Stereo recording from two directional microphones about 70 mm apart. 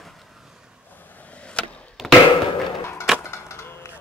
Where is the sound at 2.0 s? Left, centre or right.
Centre.